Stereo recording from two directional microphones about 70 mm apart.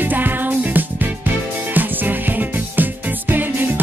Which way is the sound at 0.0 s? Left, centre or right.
Right.